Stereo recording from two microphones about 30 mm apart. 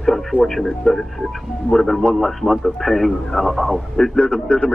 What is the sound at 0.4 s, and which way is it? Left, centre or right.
A man's voice, centre.